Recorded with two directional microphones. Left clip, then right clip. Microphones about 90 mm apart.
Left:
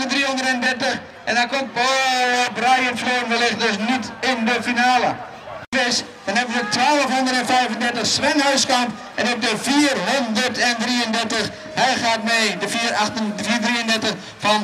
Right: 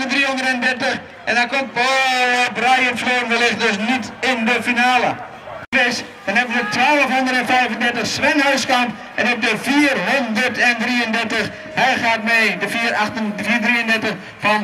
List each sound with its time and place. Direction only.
0.0 s a man's voice: centre (ahead or behind)